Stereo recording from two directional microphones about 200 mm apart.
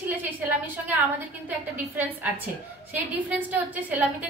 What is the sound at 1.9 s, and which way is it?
A woman's voice, 10° right (ahead or behind).